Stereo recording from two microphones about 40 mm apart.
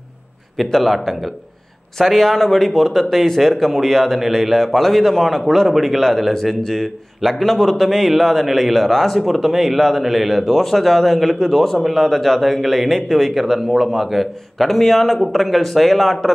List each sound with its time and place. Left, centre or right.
0.7 s a man's voice: centre
5.9 s a man's voice: centre